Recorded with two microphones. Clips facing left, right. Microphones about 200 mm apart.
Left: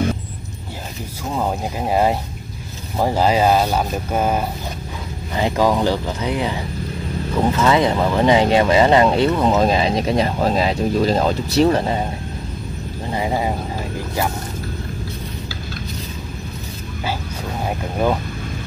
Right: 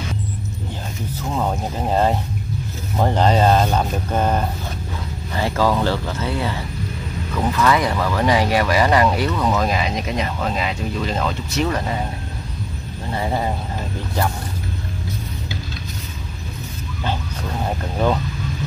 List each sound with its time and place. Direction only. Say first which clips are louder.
1.3 s speech: left 1 dB; 10° left (ahead or behind); by 12.0 s 30° left (ahead or behind)
13.1 s speech: left 1 dB; 15° left (ahead or behind)
18.0 s speech: left 1 dB; 10° left (ahead or behind)